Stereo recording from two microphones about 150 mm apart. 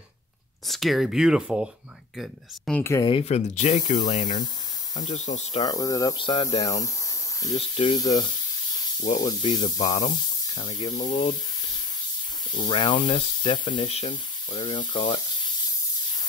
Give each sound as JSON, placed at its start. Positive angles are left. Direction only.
{"t": 0.7, "sound": "speech", "side_deg": 0}
{"t": 2.8, "sound": "speech", "side_deg": 20}
{"t": 3.1, "sound": "speech", "side_deg": 40}
{"t": 5.6, "sound": "speech", "side_deg": 25}
{"t": 7.5, "sound": "speech", "side_deg": 35}
{"t": 9.4, "sound": "speech", "side_deg": 30}
{"t": 10.9, "sound": "speech", "side_deg": 50}
{"t": 12.5, "sound": "speech", "side_deg": 35}